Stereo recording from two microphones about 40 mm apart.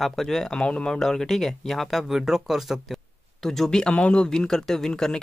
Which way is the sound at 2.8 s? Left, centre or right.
Centre.